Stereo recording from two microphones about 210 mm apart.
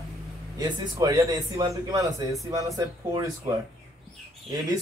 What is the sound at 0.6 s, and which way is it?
A man's voice, 15° right (ahead or behind).